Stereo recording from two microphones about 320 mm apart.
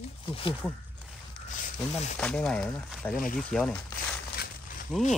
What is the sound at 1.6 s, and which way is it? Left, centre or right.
Speech, left.